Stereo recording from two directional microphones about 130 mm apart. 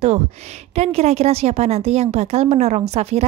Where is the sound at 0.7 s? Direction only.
55° right (ahead or behind).